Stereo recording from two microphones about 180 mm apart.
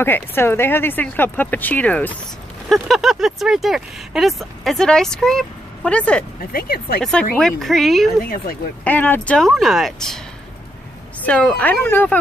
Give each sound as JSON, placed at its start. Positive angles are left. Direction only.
{"t": 0.0, "sound": "speech", "side_deg": 10}
{"t": 6.5, "sound": "speech", "side_deg": 60}
{"t": 7.0, "sound": "speech", "side_deg": 5}
{"t": 11.2, "sound": "speech", "side_deg": 5}